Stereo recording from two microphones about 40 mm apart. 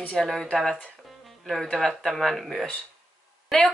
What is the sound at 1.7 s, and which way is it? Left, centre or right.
Speech, centre.